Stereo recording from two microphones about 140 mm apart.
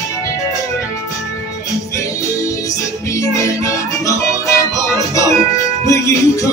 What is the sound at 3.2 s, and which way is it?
Music, 20° left (ahead or behind).